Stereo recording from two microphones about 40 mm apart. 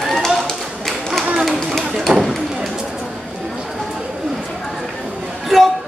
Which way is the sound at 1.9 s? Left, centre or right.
Centre.